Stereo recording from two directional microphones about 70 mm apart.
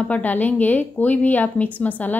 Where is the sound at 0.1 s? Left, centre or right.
Left.